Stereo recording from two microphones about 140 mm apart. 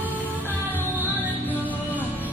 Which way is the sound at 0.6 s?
15° left (ahead or behind).